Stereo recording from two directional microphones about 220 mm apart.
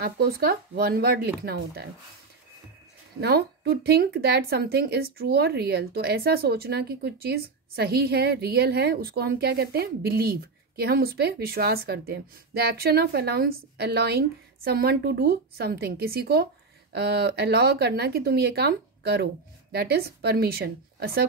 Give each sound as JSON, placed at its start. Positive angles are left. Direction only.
{"t": 0.0, "sound": "a woman's voice", "side_deg": -45}
{"t": 3.2, "sound": "a woman's voice", "side_deg": -45}